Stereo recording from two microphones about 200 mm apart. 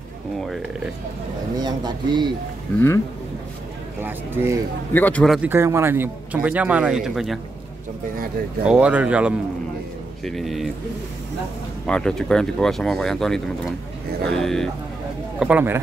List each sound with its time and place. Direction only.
1.6 s speech: 20° right (ahead or behind)
4.0 s a man's voice: 10° right (ahead or behind)
4.9 s a man's voice: 10° left (ahead or behind)
8.6 s a man's voice: 5° right (ahead or behind)
11.8 s a man's voice: 5° left (ahead or behind)